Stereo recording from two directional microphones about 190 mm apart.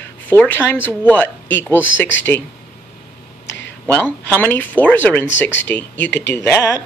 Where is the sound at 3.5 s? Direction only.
65° left (ahead or behind).